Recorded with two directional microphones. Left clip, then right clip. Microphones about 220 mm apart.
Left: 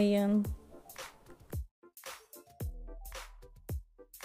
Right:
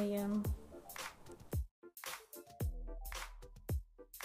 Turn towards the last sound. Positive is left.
turn(degrees=0)  # may be behind; listen again after turning